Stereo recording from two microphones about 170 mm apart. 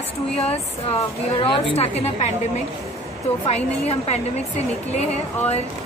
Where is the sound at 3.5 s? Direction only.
40° left (ahead or behind).